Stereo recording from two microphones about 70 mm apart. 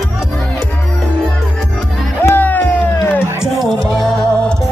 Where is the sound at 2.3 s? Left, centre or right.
Left.